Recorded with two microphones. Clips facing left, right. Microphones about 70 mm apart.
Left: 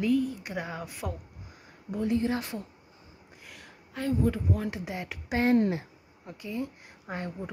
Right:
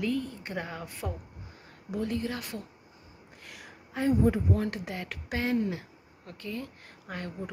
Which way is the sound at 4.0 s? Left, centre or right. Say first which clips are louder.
Right 3 dB; centre.